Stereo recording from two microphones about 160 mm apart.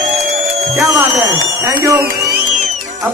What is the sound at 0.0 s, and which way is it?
Music, 40° right (ahead or behind).